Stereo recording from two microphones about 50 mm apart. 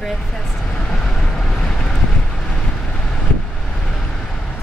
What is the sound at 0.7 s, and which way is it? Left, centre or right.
Vehicle, centre.